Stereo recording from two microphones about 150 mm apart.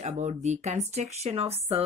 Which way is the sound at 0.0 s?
50° right (ahead or behind).